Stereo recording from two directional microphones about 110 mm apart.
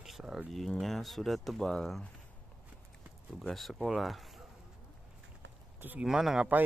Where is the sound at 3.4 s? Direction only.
Centre (ahead or behind).